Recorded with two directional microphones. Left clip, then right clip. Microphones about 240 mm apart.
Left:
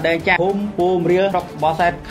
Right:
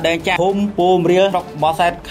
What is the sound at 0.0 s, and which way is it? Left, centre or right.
Speech, right.